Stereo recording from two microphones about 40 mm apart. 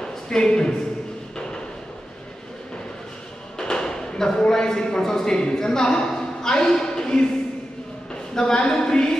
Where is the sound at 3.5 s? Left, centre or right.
Centre.